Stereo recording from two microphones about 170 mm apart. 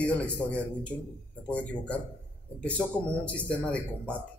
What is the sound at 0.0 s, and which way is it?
A man's voice, 5° left (ahead or behind).